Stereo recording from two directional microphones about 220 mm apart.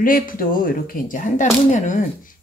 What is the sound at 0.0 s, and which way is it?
Speech, 40° left (ahead or behind).